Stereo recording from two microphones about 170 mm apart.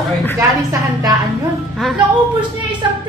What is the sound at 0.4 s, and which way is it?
Speech, 20° right (ahead or behind).